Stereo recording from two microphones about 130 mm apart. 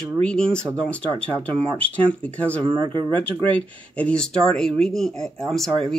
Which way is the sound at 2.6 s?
35° right (ahead or behind).